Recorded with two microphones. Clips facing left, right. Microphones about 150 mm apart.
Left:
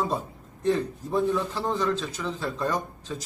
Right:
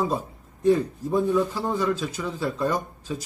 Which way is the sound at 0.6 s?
10° right (ahead or behind).